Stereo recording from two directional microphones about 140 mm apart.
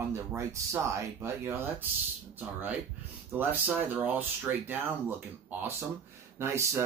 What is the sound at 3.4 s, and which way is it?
Speech, 15° right (ahead or behind).